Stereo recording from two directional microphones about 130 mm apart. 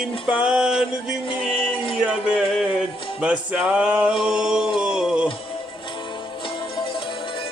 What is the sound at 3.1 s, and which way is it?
Music, 10° right (ahead or behind).